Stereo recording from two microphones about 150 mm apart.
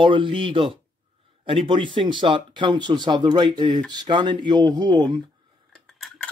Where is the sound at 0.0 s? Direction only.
35° right (ahead or behind).